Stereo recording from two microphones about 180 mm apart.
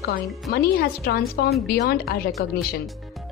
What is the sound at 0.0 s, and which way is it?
Speech, 60° left (ahead or behind).